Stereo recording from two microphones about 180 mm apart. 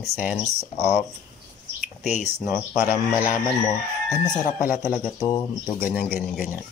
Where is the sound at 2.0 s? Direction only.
40° left (ahead or behind).